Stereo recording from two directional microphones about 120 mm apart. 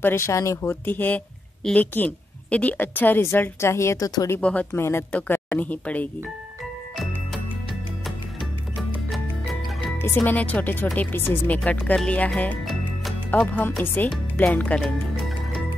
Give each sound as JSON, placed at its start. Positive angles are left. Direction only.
{"t": 0.0, "sound": "speech", "side_deg": 25}
{"t": 4.4, "sound": "speech", "side_deg": 10}
{"t": 4.7, "sound": "speech", "side_deg": 20}
{"t": 9.1, "sound": "music", "side_deg": 0}
{"t": 10.0, "sound": "speech", "side_deg": 15}